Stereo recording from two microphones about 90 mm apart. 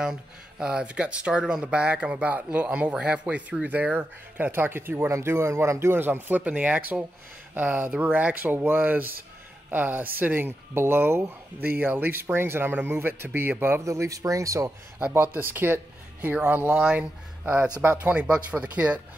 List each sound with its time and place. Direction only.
0.0 s speech: 10° right (ahead or behind); by 14.7 s 40° right (ahead or behind)
15.0 s speech: 15° right (ahead or behind)
15.3 s speech: 25° right (ahead or behind)